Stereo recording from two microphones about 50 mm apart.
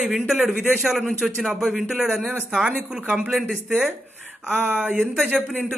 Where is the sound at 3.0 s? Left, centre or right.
Right.